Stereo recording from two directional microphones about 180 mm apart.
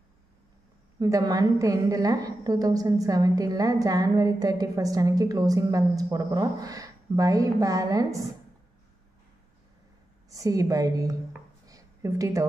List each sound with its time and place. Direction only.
0.9 s a woman's voice: 20° right (ahead or behind)
10.3 s a woman's voice: 20° right (ahead or behind)
11.6 s a sound: 20° right (ahead or behind)